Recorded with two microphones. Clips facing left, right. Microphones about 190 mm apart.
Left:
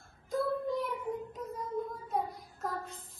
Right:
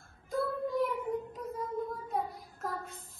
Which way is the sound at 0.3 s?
Centre (ahead or behind).